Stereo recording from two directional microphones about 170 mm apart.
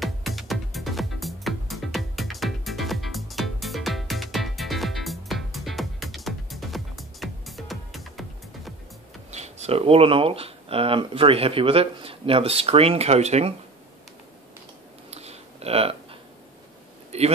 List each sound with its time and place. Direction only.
0.0 s music: centre (ahead or behind)
9.3 s speech: 40° right (ahead or behind)
15.0 s a sound: 40° right (ahead or behind)